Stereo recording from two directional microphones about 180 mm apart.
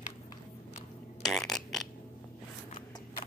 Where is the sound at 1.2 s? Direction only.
Centre (ahead or behind).